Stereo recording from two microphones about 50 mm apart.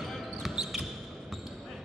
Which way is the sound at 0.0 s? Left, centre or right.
Centre.